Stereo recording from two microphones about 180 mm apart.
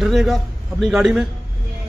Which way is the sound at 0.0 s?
Centre (ahead or behind).